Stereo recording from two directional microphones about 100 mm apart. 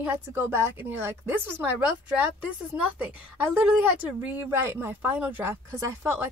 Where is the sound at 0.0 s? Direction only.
20° right (ahead or behind).